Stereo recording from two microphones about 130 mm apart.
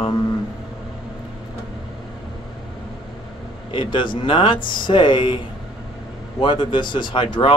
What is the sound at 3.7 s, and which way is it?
Speech, 40° left (ahead or behind).